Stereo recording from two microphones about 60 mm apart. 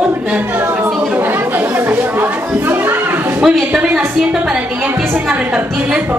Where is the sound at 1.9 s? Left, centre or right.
Right.